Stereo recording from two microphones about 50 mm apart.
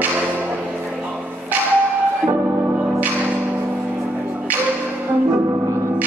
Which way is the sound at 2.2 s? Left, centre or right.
Right.